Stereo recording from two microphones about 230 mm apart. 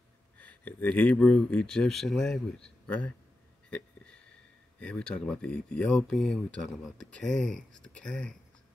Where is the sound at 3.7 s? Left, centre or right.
Centre.